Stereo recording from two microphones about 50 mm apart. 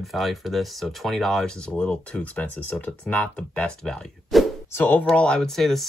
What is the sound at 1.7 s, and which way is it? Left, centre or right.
Speech, left.